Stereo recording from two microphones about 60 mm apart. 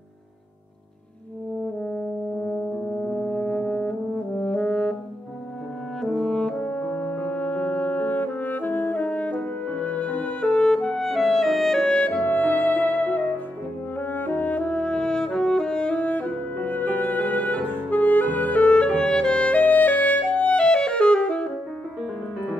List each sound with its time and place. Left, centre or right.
3.2 s brass instrument: centre
6.0 s french horn: centre
11.8 s music: centre
18.9 s music: centre